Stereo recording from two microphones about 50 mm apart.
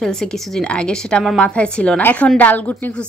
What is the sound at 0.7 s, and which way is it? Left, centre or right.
A woman's voice, centre.